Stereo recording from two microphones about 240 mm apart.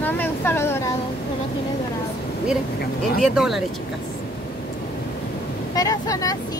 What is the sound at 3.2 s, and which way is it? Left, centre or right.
Speech, centre.